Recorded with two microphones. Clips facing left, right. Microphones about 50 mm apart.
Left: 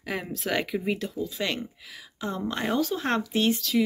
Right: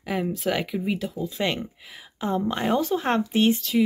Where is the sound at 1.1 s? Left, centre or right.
Right.